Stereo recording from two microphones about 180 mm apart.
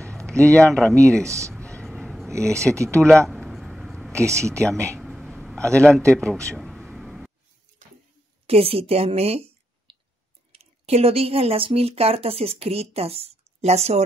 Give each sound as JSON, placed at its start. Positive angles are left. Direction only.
{"t": 0.4, "sound": "a man's voice", "side_deg": 5}
{"t": 1.2, "sound": "speech", "side_deg": -15}
{"t": 1.8, "sound": "a sound", "side_deg": 5}
{"t": 2.5, "sound": "speech", "side_deg": -15}
{"t": 3.3, "sound": "a sound", "side_deg": 0}
{"t": 4.1, "sound": "speech", "side_deg": -15}
{"t": 4.9, "sound": "a sound", "side_deg": 0}
{"t": 5.7, "sound": "a man's voice", "side_deg": 5}
{"t": 6.5, "sound": "vehicle", "side_deg": 0}
{"t": 8.5, "sound": "speech", "side_deg": -30}